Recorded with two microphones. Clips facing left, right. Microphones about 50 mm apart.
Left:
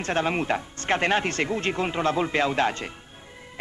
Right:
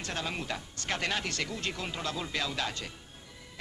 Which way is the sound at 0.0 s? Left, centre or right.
Left.